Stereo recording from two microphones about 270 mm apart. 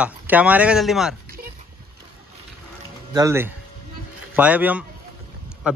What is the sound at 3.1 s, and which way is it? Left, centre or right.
A man's voice, centre.